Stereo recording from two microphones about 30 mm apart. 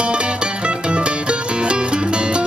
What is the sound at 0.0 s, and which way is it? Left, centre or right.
Music, right.